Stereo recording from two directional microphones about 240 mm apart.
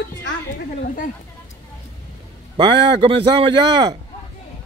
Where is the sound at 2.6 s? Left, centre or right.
Centre.